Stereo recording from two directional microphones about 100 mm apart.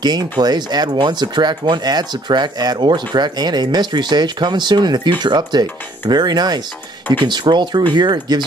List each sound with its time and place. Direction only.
0.0 s speech: 45° right (ahead or behind)